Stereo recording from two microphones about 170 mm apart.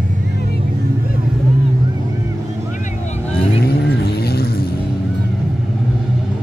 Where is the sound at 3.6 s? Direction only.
70° left (ahead or behind).